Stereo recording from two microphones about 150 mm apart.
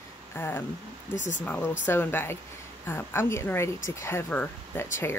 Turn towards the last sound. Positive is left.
turn(degrees=15)  # may be behind; listen again after turning